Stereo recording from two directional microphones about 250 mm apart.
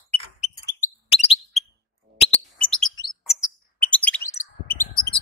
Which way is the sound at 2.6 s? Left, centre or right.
Centre.